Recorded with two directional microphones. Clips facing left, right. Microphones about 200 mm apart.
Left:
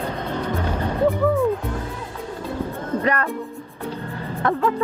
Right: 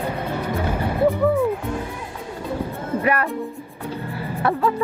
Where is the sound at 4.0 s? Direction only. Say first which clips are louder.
Right 1 dB; 15° right (ahead or behind).